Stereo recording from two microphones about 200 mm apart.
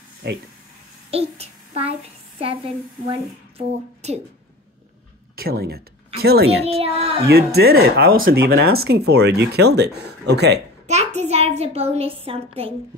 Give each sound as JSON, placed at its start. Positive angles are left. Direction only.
{"t": 0.2, "sound": "speech", "side_deg": -55}
{"t": 1.1, "sound": "a child's voice", "side_deg": -30}
{"t": 3.1, "sound": "a woman's voice", "side_deg": -30}
{"t": 5.3, "sound": "speech", "side_deg": -50}
{"t": 6.6, "sound": "a child's voice", "side_deg": -30}
{"t": 7.2, "sound": "speech", "side_deg": -50}
{"t": 11.1, "sound": "speech", "side_deg": -30}